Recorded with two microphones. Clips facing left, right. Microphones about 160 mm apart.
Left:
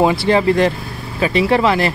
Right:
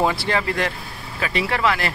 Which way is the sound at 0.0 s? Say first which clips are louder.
Left 8 dB; 15° left (ahead or behind).